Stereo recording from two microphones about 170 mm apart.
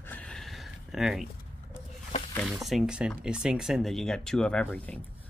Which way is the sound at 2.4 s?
Centre (ahead or behind).